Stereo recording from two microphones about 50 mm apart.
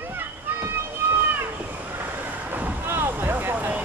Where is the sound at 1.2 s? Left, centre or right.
Right.